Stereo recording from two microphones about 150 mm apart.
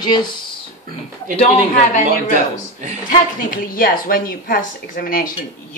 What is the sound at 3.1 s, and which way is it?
Speech, 70° left (ahead or behind).